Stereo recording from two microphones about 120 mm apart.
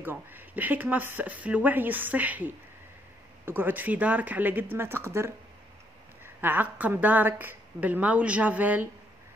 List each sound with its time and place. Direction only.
0.0 s a woman's voice: 15° right (ahead or behind)